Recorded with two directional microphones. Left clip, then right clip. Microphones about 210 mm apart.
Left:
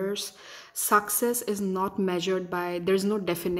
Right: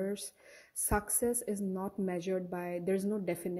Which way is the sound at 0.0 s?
15° right (ahead or behind).